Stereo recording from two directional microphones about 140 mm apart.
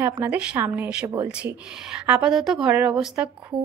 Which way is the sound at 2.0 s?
5° right (ahead or behind).